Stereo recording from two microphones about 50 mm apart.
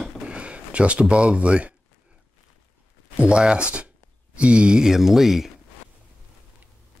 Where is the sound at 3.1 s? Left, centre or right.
Right; by 5.5 s centre.